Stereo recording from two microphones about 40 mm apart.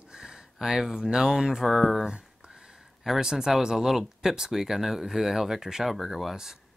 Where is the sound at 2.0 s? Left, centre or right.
Centre.